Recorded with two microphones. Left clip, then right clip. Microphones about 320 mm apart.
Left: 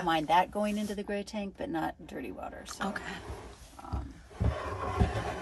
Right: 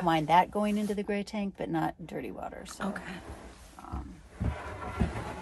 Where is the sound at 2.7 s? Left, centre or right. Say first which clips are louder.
Left 5 dB; centre.